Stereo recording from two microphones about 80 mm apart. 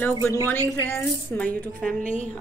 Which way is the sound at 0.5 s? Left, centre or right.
Left.